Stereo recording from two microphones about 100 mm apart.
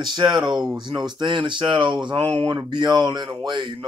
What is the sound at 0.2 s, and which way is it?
Speech, 50° right (ahead or behind).